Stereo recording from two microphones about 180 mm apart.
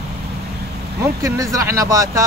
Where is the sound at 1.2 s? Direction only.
20° right (ahead or behind).